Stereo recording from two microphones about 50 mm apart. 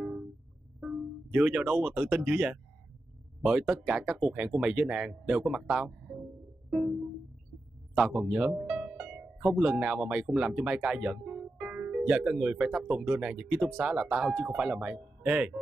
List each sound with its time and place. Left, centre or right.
0.7 s speech: centre
6.7 s music: centre
7.9 s speech: centre